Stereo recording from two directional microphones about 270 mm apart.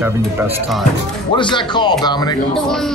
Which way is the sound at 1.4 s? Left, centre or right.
Centre.